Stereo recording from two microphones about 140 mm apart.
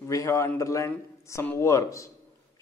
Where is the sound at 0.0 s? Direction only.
20° left (ahead or behind).